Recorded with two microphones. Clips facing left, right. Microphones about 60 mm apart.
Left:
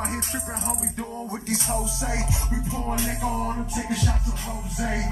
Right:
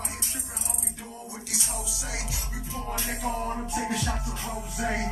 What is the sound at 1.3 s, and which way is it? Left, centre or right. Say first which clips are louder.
Music: left 9 dB; left.